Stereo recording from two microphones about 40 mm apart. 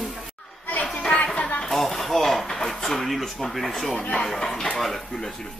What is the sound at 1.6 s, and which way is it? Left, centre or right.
Speech, centre.